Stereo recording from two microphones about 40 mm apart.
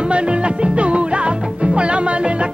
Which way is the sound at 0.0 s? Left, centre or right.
Right.